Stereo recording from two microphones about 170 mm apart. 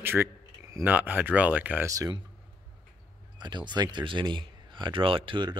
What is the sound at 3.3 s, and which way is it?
Speech, 25° right (ahead or behind).